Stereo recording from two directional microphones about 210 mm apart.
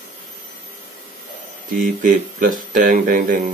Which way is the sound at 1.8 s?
40° right (ahead or behind).